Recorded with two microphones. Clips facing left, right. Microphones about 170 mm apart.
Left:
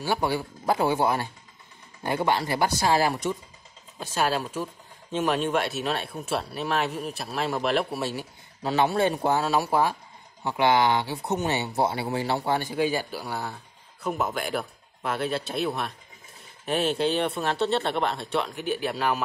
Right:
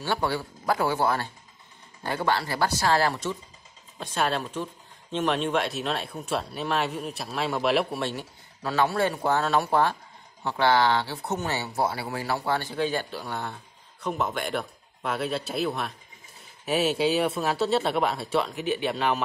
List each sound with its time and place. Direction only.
0.0 s speech: 10° left (ahead or behind)
4.0 s speech: 5° left (ahead or behind)
8.6 s speech: 20° left (ahead or behind)
9.4 s speech: 5° left (ahead or behind)